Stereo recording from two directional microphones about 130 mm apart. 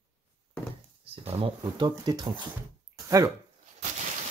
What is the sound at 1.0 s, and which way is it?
Speech, 50° right (ahead or behind).